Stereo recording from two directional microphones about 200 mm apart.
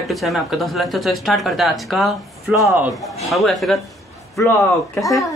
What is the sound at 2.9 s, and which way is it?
Speech, centre (ahead or behind).